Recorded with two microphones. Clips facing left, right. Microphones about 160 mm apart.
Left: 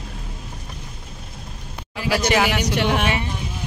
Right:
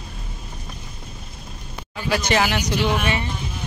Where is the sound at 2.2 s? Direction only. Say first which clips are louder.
Left 2 dB; 5° left (ahead or behind).